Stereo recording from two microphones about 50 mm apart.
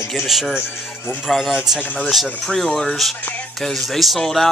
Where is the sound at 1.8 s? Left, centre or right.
Left.